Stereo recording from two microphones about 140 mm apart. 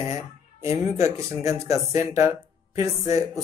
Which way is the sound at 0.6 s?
20° right (ahead or behind).